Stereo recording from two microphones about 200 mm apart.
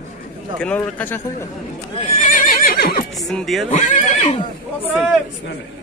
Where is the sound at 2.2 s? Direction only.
40° left (ahead or behind).